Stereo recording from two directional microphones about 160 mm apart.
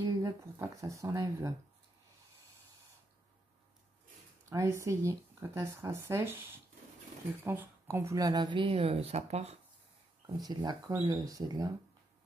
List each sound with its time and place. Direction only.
0.0 s speech: 20° right (ahead or behind)
4.5 s speech: 20° right (ahead or behind); by 9.6 s 40° right (ahead or behind)
10.2 s speech: 25° right (ahead or behind)